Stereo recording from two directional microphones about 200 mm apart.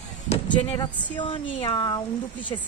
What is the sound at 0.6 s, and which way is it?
Speech, 25° left (ahead or behind).